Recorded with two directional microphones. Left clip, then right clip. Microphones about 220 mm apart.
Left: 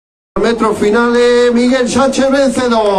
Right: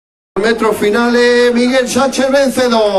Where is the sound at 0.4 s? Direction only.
Centre (ahead or behind).